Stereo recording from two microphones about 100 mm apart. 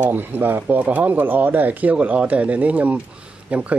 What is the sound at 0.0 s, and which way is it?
A man's voice, 20° right (ahead or behind).